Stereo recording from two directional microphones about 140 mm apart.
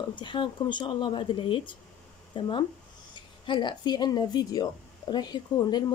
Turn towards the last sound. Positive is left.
turn(degrees=30)  # may be behind; listen again after turning